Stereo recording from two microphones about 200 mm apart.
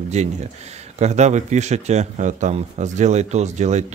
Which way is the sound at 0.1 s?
35° right (ahead or behind).